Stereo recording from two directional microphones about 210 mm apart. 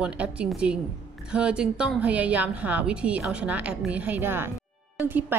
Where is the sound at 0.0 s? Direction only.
5° right (ahead or behind).